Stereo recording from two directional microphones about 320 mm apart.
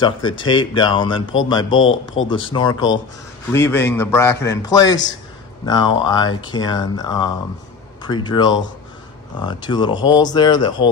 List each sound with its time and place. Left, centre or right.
0.0 s speech: centre
1.7 s a man's voice: left
2.2 s speech: centre